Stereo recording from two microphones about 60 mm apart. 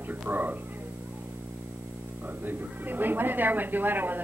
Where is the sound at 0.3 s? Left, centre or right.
Right.